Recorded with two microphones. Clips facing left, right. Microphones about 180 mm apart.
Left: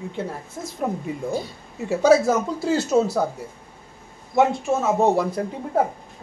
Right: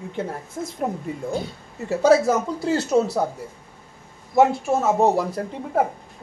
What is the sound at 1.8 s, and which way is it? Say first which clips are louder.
Speech: even; centre (ahead or behind).